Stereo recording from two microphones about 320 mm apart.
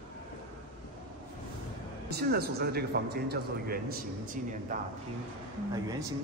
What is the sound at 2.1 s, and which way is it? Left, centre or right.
A man's voice, right.